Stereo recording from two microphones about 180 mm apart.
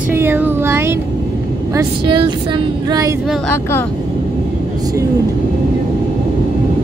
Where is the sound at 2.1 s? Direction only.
25° right (ahead or behind).